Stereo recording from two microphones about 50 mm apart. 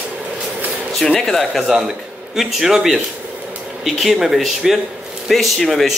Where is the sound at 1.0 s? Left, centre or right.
Centre.